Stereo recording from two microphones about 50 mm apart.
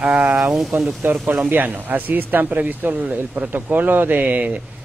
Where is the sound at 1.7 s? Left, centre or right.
Right.